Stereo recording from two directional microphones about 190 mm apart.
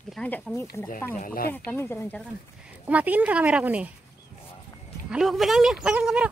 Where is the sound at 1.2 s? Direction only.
50° left (ahead or behind).